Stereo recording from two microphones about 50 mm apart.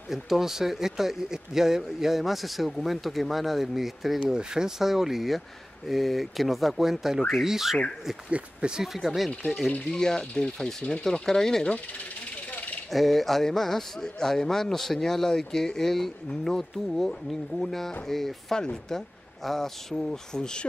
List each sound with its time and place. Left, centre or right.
0.1 s speech: centre
4.2 s speech: centre
8.3 s speech: right
8.7 s speech: centre
9.8 s a man's voice: centre
12.4 s a sound: left
12.9 s a man's voice: centre